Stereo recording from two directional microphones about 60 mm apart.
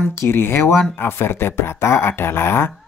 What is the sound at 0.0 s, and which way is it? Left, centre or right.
Speech, left.